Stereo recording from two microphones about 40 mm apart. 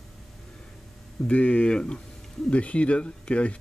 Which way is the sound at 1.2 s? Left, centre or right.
Left.